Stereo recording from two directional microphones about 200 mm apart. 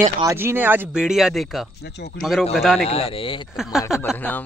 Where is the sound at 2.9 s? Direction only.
30° left (ahead or behind).